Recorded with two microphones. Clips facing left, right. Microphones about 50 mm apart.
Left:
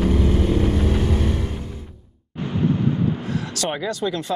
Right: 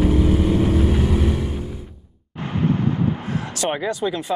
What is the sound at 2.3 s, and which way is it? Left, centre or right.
Vehicle, right.